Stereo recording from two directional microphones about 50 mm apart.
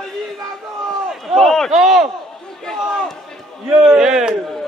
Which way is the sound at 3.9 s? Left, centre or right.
Centre.